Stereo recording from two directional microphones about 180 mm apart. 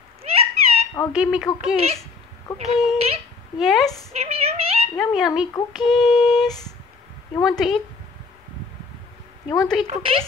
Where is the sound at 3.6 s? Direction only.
Centre (ahead or behind).